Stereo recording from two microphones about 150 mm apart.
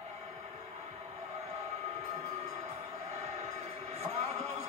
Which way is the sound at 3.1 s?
50° right (ahead or behind).